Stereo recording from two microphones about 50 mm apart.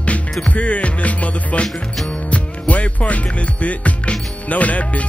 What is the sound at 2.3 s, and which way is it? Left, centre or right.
Speech, left.